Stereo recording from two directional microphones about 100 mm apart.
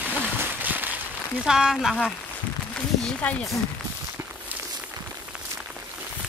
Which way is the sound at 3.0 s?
10° left (ahead or behind).